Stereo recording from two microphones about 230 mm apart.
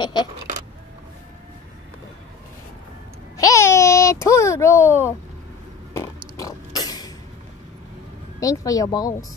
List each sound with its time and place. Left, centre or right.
0.0 s speech: centre
3.3 s a sound: centre
8.4 s speech: centre